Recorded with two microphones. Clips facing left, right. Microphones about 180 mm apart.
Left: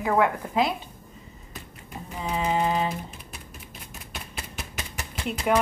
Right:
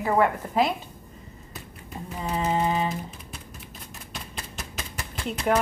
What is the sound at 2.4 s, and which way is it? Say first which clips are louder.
Speech: even; centre (ahead or behind).